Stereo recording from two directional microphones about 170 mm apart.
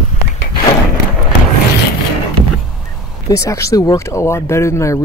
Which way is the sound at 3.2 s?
20° left (ahead or behind).